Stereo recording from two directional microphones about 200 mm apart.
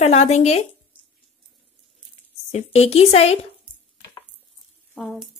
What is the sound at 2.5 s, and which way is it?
Speech, 30° left (ahead or behind).